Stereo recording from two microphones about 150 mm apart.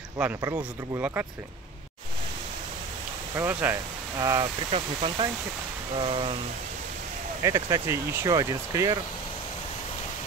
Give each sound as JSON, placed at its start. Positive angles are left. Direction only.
{"t": 0.6, "sound": "speech", "side_deg": -10}
{"t": 3.3, "sound": "speech", "side_deg": -15}
{"t": 4.2, "sound": "speech", "side_deg": -25}
{"t": 4.6, "sound": "speech", "side_deg": -40}
{"t": 7.4, "sound": "speech", "side_deg": -20}